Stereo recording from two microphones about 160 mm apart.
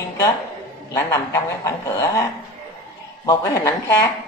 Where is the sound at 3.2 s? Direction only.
20° left (ahead or behind).